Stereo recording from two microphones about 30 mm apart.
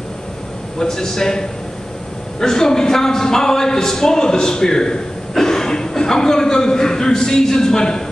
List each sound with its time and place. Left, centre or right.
0.7 s speech: centre
2.4 s a man's voice: centre